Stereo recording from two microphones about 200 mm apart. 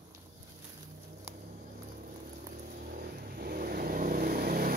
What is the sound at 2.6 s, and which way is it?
Vehicle, 50° right (ahead or behind).